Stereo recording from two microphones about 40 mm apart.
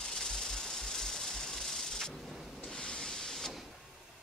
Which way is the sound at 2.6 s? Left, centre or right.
Left.